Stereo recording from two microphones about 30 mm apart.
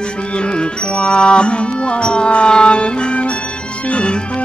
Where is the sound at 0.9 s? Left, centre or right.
Left.